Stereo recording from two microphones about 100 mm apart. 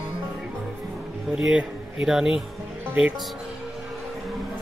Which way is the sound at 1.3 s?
10° right (ahead or behind).